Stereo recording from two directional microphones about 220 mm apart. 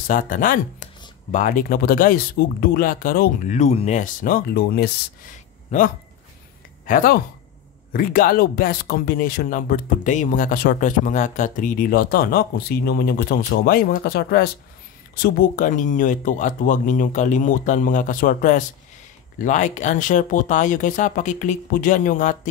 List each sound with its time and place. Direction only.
0.1 s speech: 40° left (ahead or behind)
5.7 s speech: 30° left (ahead or behind)
6.9 s speech: 40° left (ahead or behind)